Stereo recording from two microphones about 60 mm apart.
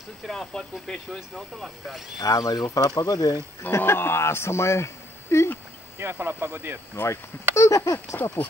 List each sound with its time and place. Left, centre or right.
0.3 s speech: centre
2.2 s speech: left
3.7 s speech: left
5.9 s speech: right
7.0 s speech: left